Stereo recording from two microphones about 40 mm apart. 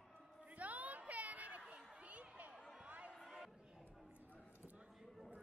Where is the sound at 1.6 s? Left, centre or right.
Right.